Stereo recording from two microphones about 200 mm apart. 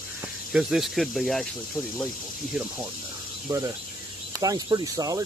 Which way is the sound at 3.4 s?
15° right (ahead or behind).